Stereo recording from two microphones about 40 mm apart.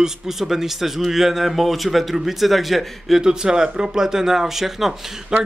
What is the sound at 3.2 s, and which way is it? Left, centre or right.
Speech, centre.